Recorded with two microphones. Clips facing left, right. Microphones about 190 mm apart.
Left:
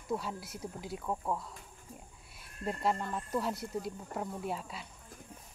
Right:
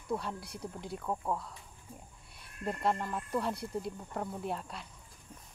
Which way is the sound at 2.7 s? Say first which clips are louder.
Even; centre (ahead or behind).